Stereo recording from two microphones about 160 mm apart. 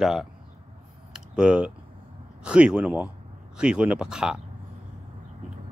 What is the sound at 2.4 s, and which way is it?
Speech, 5° right (ahead or behind).